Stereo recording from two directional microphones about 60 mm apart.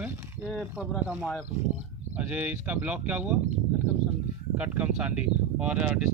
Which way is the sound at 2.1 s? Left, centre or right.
Right.